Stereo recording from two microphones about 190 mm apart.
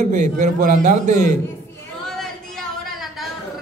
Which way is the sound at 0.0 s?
40° right (ahead or behind).